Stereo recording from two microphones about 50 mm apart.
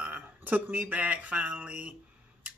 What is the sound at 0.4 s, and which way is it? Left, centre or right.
Speech, right.